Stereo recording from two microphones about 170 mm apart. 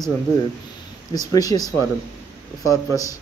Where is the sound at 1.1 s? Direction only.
20° left (ahead or behind).